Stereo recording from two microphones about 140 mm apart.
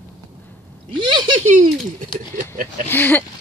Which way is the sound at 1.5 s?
70° right (ahead or behind).